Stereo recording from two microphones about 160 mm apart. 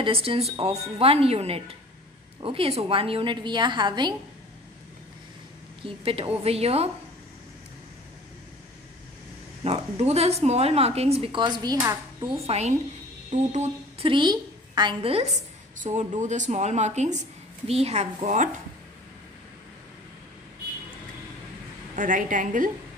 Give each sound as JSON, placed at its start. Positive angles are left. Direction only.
{"t": 0.0, "sound": "a woman's voice", "side_deg": -35}
{"t": 5.9, "sound": "a woman's voice", "side_deg": -35}
{"t": 9.6, "sound": "a woman's voice", "side_deg": -40}
{"t": 11.4, "sound": "a woman's voice", "side_deg": -25}
{"t": 21.9, "sound": "a woman's voice", "side_deg": -55}